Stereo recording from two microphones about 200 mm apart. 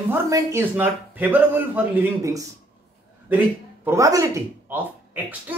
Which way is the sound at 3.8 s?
15° right (ahead or behind).